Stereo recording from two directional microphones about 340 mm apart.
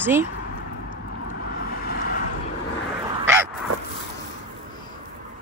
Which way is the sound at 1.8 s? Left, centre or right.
Left.